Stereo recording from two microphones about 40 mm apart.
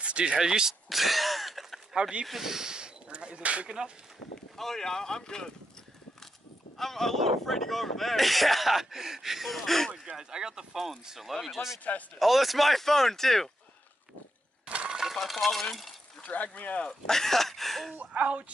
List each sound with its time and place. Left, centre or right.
0.0 s a sound: right
0.4 s speech: centre
0.8 s throat clearing: centre
2.0 s speech: right
2.2 s speech: centre; by 3.7 s right
4.6 s speech: centre
6.8 s speech: centre
8.9 s speech: centre
10.1 s speech: centre
14.7 s coin: right
15.1 s a sound: centre
16.4 s speech: left
16.8 s speech: centre
17.9 s speech: right